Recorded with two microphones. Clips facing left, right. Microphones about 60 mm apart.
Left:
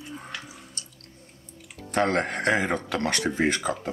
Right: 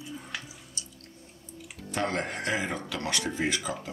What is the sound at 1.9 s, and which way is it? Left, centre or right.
Speech, left.